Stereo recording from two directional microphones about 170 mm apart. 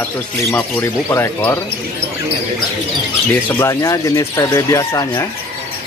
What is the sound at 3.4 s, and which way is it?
Speech, 15° left (ahead or behind).